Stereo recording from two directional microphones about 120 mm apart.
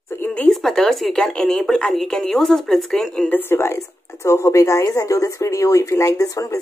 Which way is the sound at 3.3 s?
20° left (ahead or behind).